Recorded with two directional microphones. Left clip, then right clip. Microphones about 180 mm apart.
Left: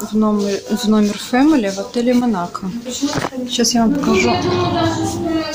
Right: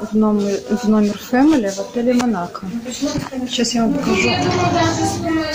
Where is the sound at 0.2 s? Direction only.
Centre (ahead or behind).